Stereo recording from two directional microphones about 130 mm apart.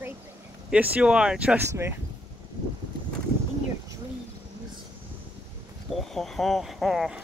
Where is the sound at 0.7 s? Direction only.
10° right (ahead or behind).